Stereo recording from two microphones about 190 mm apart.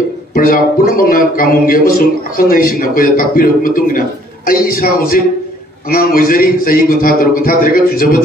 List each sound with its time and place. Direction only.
0.3 s speech: 50° left (ahead or behind)